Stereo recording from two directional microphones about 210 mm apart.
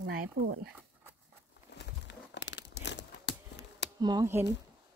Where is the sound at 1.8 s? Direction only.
55° left (ahead or behind).